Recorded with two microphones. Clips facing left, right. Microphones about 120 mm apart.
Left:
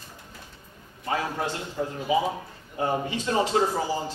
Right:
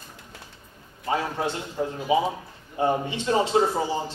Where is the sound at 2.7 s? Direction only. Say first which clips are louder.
Right 3 dB; 25° right (ahead or behind).